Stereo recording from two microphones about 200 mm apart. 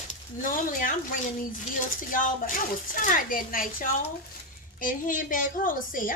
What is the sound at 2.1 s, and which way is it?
A woman's voice, 45° left (ahead or behind).